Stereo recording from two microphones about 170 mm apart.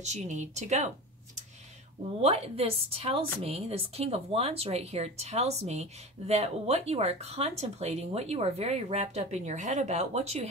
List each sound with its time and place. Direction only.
0.0 s speech: 45° right (ahead or behind)
2.2 s speech: 35° right (ahead or behind)